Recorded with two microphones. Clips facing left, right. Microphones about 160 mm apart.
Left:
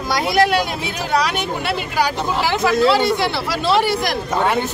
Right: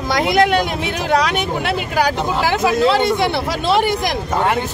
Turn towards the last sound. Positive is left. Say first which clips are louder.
# right 1 dB
turn(degrees=-20)  # may be behind; listen again after turning